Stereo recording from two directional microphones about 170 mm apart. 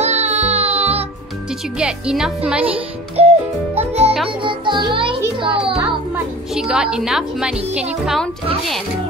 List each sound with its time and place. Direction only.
0.0 s music: 40° right (ahead or behind)
1.8 s speech: 5° right (ahead or behind)
2.7 s music: 35° right (ahead or behind)
4.3 s a child's voice: 30° right (ahead or behind)
5.6 s speech: 5° right (ahead or behind)